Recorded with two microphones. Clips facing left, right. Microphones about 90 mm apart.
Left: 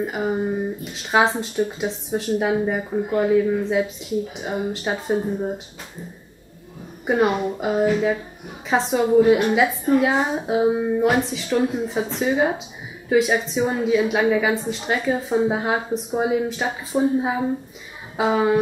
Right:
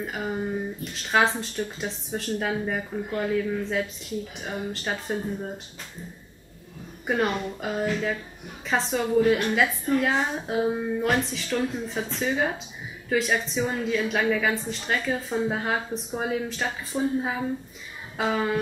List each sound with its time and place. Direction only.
0.0 s a woman's voice: 15° left (ahead or behind)
0.8 s a woman's voice: 5° left (ahead or behind)
7.1 s a woman's voice: 15° left (ahead or behind)